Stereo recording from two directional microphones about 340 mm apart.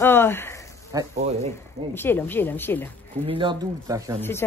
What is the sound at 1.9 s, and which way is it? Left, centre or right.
Speech, centre.